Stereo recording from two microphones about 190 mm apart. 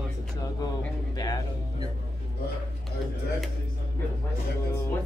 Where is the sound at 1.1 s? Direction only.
20° left (ahead or behind).